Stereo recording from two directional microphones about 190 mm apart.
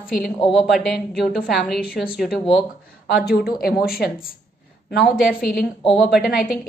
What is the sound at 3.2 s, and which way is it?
A woman's voice, 55° left (ahead or behind).